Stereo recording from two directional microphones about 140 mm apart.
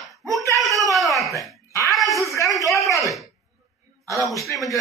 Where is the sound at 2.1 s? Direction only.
20° left (ahead or behind).